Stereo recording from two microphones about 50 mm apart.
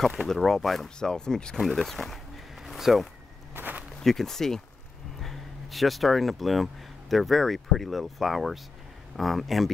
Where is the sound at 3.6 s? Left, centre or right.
Right.